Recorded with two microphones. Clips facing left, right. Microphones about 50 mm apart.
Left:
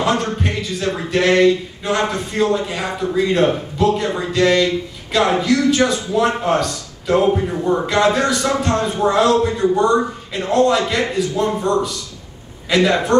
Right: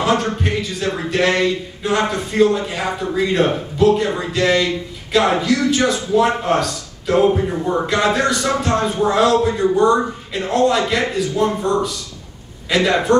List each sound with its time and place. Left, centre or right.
0.0 s a man's voice: centre